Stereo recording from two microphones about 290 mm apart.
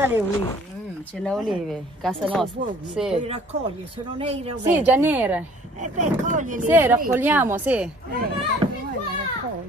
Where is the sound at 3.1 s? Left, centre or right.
Right.